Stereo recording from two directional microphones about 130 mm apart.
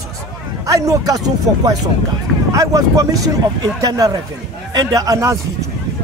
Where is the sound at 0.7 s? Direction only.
25° right (ahead or behind).